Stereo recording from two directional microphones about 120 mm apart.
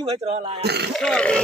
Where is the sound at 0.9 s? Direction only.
5° left (ahead or behind).